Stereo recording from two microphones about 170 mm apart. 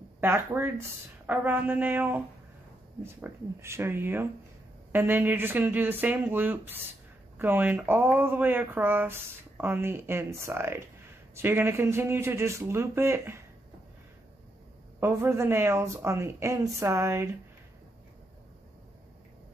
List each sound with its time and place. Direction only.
0.2 s speech: 15° right (ahead or behind)
15.0 s speech: 15° right (ahead or behind)